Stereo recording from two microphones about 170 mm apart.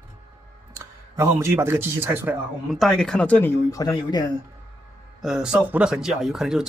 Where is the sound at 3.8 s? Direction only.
25° left (ahead or behind).